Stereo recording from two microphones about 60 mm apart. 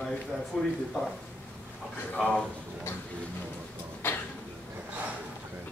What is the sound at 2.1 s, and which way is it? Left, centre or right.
Speech, centre.